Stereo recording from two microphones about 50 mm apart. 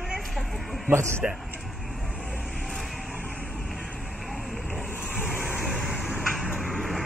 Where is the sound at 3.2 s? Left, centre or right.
Left.